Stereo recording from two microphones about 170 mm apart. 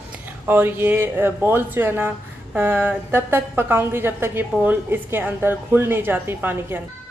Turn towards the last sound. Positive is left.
turn(degrees=-10)  # may be behind; listen again after turning